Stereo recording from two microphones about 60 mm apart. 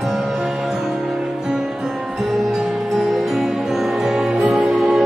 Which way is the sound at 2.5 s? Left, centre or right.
Centre.